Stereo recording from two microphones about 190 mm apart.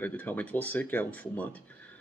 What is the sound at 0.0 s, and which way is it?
Speech, 10° left (ahead or behind).